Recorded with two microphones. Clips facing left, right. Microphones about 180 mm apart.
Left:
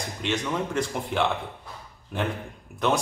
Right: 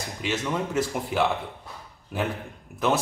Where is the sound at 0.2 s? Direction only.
5° right (ahead or behind).